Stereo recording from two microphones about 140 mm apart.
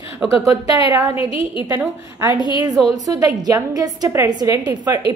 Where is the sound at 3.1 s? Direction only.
25° right (ahead or behind).